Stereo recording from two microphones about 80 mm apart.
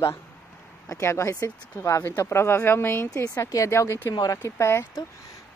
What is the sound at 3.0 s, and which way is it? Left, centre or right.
Speech, left.